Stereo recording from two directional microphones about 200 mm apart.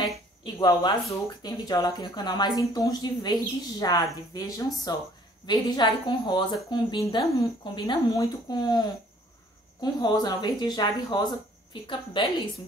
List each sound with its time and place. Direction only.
0.0 s a woman's voice: 20° left (ahead or behind)